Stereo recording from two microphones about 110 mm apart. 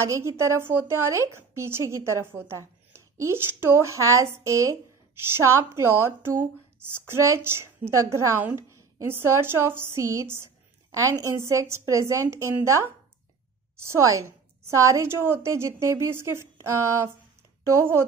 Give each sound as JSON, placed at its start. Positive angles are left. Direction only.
{"t": 0.0, "sound": "speech", "side_deg": -25}